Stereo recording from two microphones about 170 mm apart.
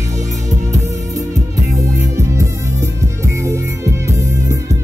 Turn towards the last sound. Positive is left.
turn(degrees=-15)  # may be behind; listen again after turning